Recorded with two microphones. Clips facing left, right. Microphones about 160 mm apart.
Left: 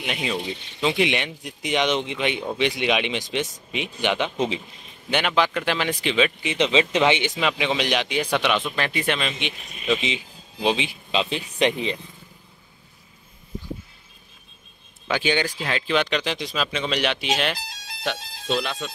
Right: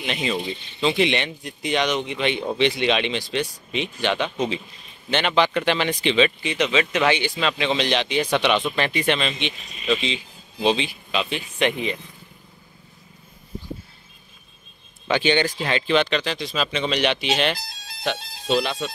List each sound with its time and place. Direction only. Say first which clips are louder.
0.0 s speech: right 2 dB; 5° left (ahead or behind); by 2.1 s 20° left (ahead or behind)
2.1 s speech: right 2 dB; 10° left (ahead or behind)
5.1 s speech: right 2 dB; 5° left (ahead or behind)
6.4 s speech: left 1 dB; 25° left (ahead or behind)
10.9 s a man's voice: left 1 dB; 25° left (ahead or behind)
15.0 s speech: right 3 dB; 5° left (ahead or behind)
16.5 s speech: right 3 dB; centre (ahead or behind)